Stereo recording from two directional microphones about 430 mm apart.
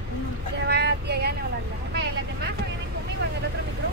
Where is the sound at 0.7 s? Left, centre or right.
Right.